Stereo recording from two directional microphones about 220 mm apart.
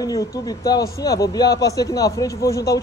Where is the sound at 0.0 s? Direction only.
15° left (ahead or behind).